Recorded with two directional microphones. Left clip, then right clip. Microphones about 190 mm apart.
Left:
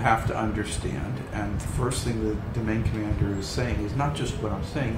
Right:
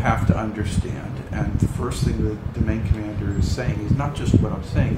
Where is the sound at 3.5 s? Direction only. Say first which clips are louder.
Right 2 dB; 5° right (ahead or behind).